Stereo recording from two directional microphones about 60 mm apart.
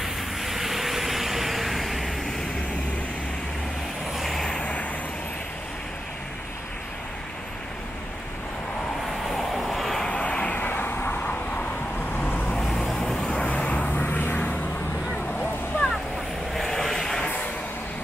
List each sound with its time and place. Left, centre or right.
0.0 s vehicle: centre
4.1 s vehicle: centre
4.5 s vehicle: left
9.3 s vehicle: centre
10.0 s vehicle: centre
10.6 s vehicle: left
12.6 s vehicle: centre
13.4 s vehicle: left
16.5 s vehicle: centre